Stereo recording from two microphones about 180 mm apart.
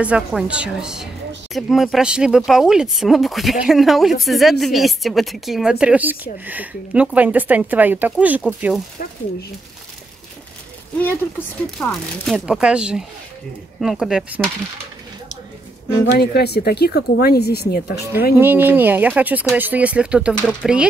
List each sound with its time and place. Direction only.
0.0 s speech: 5° right (ahead or behind)
11.0 s speech: 10° left (ahead or behind)
12.3 s speech: 5° right (ahead or behind)
16.2 s speech: 65° left (ahead or behind)
18.4 s speech: 10° right (ahead or behind)